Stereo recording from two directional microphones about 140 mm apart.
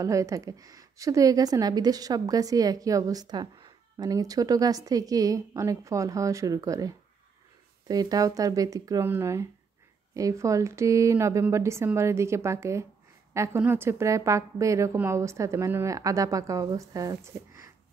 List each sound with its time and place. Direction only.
0.0 s a woman's voice: 25° right (ahead or behind)